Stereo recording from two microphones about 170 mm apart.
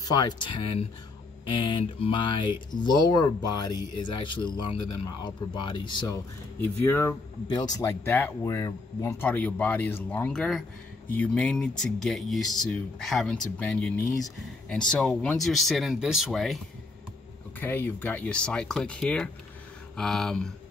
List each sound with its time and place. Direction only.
0.0 s speech: 25° left (ahead or behind)
7.4 s speech: 25° left (ahead or behind)
7.8 s speech: 15° left (ahead or behind)
17.6 s speech: 10° left (ahead or behind)